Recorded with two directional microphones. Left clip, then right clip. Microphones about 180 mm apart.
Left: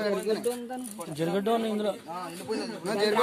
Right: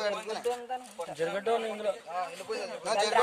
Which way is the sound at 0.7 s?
5° right (ahead or behind).